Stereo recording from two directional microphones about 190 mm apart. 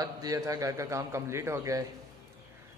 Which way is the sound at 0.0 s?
20° right (ahead or behind).